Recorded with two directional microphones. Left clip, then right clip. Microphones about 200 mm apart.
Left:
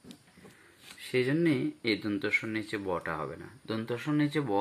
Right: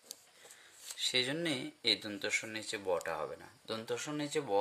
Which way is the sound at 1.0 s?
50° right (ahead or behind).